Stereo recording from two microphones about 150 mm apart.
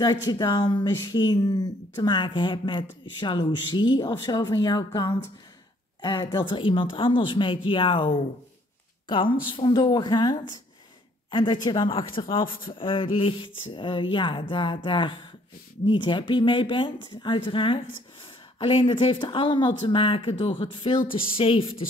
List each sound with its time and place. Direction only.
0.0 s speech: 30° left (ahead or behind)
9.1 s speech: 35° left (ahead or behind)